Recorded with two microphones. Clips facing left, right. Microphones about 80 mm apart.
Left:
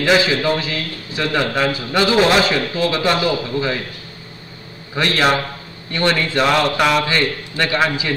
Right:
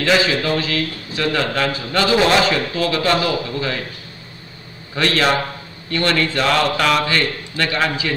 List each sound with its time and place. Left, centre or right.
0.0 s a man's voice: centre
4.9 s a man's voice: centre